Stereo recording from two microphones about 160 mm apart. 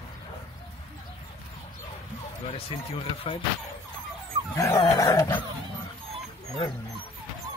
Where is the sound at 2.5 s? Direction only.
35° left (ahead or behind).